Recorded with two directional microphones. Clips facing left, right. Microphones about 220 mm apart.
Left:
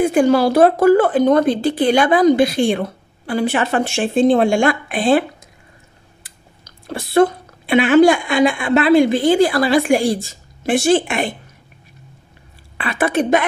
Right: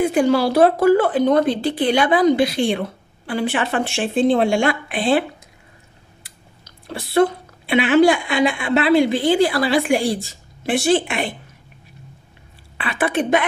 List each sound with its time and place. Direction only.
0.0 s a woman's voice: 45° left (ahead or behind)
6.9 s a woman's voice: 45° left (ahead or behind)
12.7 s a woman's voice: 40° left (ahead or behind)